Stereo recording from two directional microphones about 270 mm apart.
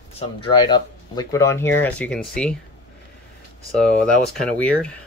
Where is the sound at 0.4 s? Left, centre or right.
Centre.